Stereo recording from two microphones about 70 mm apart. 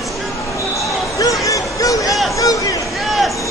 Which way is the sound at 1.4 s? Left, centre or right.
Left.